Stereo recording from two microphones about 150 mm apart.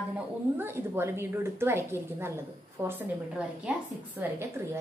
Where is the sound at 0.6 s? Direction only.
15° right (ahead or behind).